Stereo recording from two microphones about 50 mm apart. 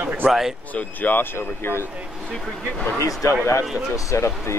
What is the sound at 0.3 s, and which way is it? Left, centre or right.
Speech, centre.